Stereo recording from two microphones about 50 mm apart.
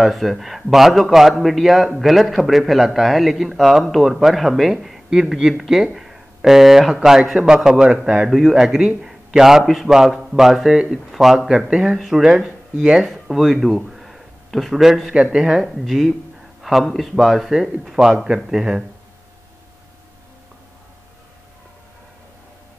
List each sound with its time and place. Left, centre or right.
0.0 s a man's voice: centre
15.3 s speech: centre
15.7 s a man's voice: centre